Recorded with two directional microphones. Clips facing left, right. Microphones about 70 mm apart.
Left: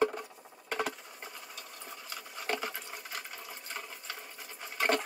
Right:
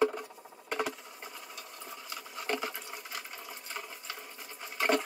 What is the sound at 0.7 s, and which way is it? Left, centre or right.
Patter, centre.